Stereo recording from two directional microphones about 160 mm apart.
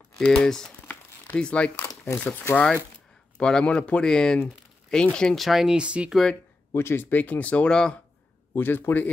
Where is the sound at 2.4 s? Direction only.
10° left (ahead or behind).